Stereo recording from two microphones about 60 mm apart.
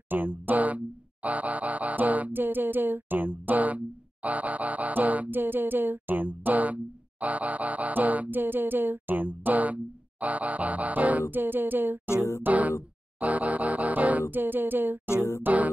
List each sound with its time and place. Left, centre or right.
0.1 s speech: right
14.3 s a sound: right
15.4 s speech: right